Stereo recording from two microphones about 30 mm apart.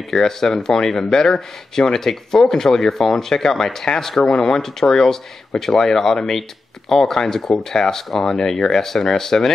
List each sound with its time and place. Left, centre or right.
0.1 s speech: centre